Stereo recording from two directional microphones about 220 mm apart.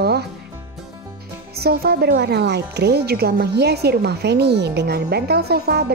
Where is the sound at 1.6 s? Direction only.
45° right (ahead or behind).